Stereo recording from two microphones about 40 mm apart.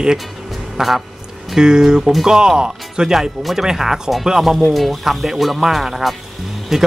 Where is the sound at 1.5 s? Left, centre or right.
Centre.